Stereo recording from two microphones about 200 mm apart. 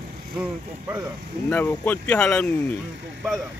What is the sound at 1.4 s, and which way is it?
Speech, 10° left (ahead or behind).